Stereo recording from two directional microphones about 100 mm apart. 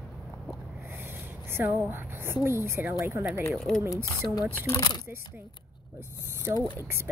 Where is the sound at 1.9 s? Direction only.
25° right (ahead or behind).